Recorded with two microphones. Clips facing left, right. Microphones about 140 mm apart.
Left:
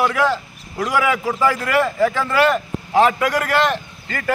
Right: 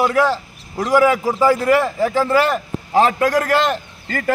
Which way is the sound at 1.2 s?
15° right (ahead or behind).